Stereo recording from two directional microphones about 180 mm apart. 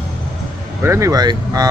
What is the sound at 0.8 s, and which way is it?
Speech, 15° right (ahead or behind).